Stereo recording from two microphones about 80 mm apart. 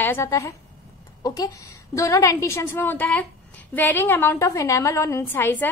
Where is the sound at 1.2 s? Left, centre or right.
Left.